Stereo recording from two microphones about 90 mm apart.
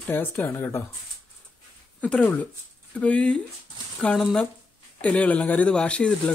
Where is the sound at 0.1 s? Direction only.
25° left (ahead or behind).